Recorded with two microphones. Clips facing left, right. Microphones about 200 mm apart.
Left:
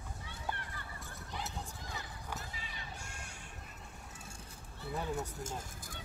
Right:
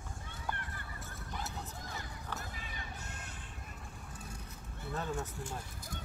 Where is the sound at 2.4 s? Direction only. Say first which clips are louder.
Right 2 dB; 50° right (ahead or behind).